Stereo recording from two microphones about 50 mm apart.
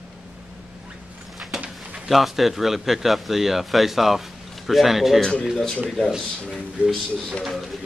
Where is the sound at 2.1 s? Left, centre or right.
Centre.